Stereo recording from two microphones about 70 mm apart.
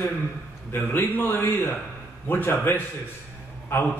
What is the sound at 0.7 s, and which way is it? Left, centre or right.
A man's voice, left.